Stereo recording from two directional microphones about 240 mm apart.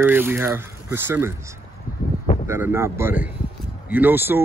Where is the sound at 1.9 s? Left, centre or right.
Left.